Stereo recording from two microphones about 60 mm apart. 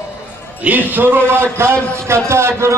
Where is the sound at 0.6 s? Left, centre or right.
Right.